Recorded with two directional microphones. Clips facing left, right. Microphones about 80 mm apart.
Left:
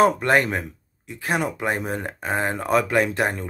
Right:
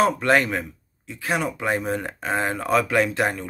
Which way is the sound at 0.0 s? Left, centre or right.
Left.